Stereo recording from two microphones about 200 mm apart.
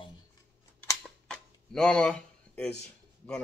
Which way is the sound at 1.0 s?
5° left (ahead or behind).